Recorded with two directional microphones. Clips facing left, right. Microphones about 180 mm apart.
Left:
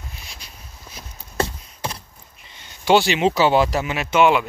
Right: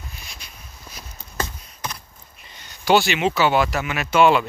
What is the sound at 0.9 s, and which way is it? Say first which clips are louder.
Horse: left 5 dB; 30° left (ahead or behind).